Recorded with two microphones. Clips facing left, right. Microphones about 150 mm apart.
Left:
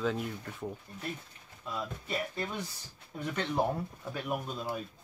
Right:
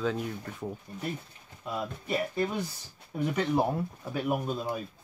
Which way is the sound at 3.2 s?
10° right (ahead or behind).